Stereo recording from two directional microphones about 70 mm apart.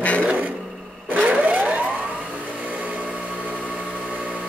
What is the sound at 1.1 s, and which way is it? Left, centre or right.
Vehicle, right.